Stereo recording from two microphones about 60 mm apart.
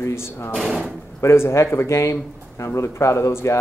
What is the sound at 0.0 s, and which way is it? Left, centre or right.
Speech, left.